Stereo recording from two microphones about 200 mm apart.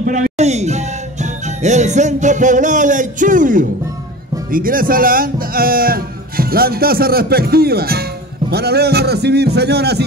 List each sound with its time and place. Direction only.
0.0 s speech: 40° right (ahead or behind); by 10.0 s 55° right (ahead or behind)